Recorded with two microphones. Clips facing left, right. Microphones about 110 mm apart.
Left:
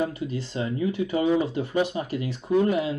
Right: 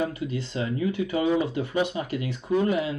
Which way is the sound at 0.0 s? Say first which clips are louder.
Left 1 dB; 35° left (ahead or behind).